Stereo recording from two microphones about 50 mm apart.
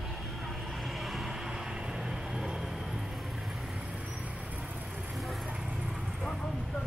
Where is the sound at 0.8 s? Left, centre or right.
Centre.